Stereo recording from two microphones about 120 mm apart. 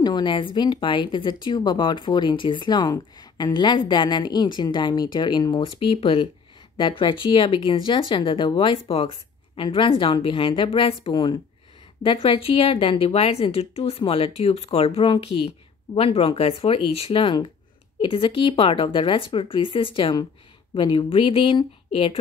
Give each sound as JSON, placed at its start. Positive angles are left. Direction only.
{"t": 0.0, "sound": "a woman's voice", "side_deg": 35}
{"t": 5.6, "sound": "speech", "side_deg": 50}